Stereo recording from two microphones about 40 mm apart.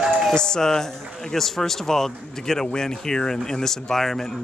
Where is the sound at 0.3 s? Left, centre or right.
Centre.